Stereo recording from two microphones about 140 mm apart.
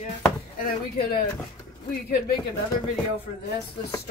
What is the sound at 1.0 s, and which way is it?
Speech, 90° left.